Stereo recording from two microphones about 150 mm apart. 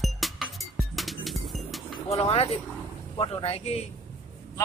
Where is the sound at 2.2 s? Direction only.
40° left (ahead or behind).